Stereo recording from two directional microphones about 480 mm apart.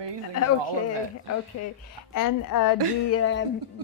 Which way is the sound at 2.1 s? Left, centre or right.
Left.